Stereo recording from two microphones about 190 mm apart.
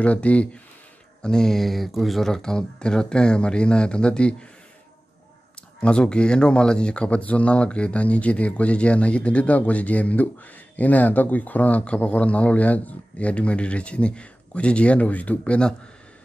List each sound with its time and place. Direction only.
0.0 s speech: 5° left (ahead or behind)
5.8 s speech: 5° left (ahead or behind)